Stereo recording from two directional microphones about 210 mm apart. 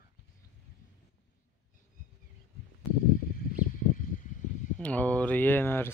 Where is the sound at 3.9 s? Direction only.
40° left (ahead or behind).